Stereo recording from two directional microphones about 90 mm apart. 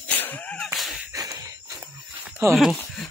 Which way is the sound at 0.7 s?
Centre (ahead or behind).